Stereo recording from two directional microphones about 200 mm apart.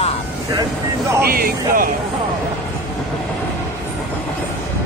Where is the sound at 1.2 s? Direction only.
50° right (ahead or behind).